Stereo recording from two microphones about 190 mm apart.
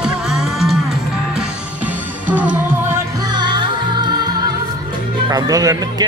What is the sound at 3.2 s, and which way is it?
Music, 25° right (ahead or behind).